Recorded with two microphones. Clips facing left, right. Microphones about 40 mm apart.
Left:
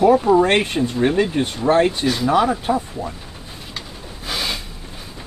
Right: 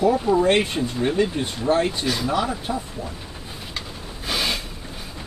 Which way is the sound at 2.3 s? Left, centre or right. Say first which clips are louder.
Left 7 dB; left.